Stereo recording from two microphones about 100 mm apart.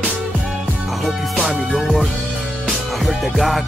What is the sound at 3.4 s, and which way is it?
Speech, centre (ahead or behind).